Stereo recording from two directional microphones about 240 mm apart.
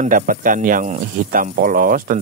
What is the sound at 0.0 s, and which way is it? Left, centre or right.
Speech, right.